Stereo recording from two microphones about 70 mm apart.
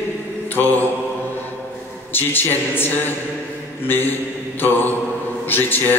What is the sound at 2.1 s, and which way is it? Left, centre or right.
A man's voice, left.